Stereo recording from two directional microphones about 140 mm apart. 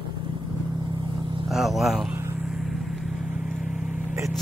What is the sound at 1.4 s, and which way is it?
Speech, centre (ahead or behind).